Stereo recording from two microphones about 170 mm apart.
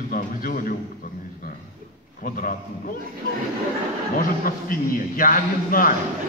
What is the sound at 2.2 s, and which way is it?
Speech, 55° left (ahead or behind).